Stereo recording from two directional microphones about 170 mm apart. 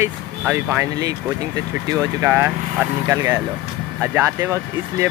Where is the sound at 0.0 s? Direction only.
15° right (ahead or behind).